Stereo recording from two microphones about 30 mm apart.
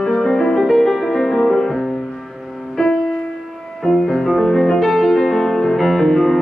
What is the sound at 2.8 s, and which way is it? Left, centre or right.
Music, centre.